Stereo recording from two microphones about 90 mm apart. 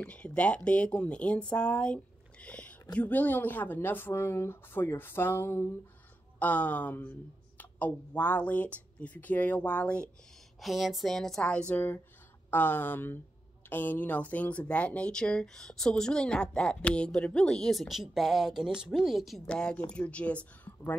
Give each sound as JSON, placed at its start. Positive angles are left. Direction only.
{"t": 0.0, "sound": "a woman's voice", "side_deg": 10}
{"t": 6.4, "sound": "speech", "side_deg": 15}
{"t": 10.6, "sound": "a woman's voice", "side_deg": 0}
{"t": 19.4, "sound": "speech", "side_deg": 10}